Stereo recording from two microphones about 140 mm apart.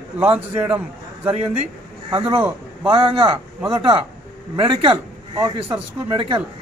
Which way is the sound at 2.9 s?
40° right (ahead or behind).